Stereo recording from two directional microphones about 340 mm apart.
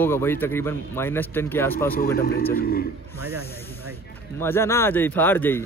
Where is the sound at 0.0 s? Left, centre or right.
Centre.